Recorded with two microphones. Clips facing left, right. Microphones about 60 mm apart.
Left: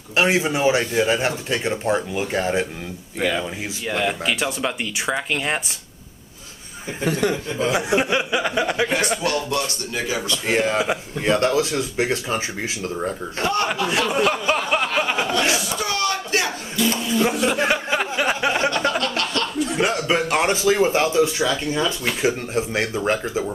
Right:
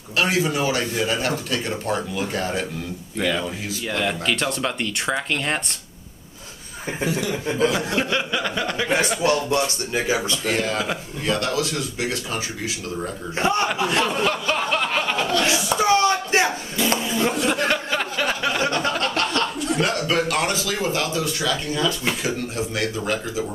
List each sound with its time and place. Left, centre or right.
0.1 s speech: left; by 5.8 s centre
7.1 s speech: left
7.5 s speech: left
9.2 s speech: right
10.4 s speech: left
13.4 s speech: centre
13.8 s chuckle: centre; by 15.6 s left
15.8 s a sound: right
17.2 s speech: centre
17.6 s a sound: centre
18.9 s chuckle: right
19.8 s speech: centre